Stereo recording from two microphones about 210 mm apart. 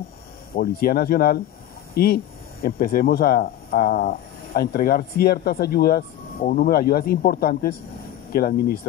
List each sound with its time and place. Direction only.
0.6 s speech: 45° left (ahead or behind)